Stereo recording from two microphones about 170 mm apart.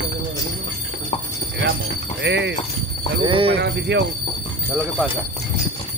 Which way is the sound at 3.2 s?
30° right (ahead or behind).